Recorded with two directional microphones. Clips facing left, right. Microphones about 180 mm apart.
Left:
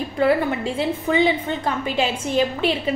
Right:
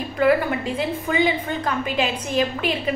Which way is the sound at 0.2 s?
30° left (ahead or behind).